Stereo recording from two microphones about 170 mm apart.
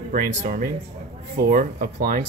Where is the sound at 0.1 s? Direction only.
50° right (ahead or behind).